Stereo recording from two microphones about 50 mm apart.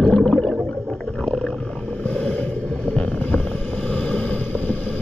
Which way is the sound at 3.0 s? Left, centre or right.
Left.